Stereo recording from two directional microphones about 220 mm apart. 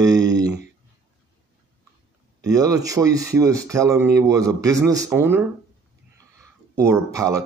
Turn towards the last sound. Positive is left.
turn(degrees=-15)  # may be behind; listen again after turning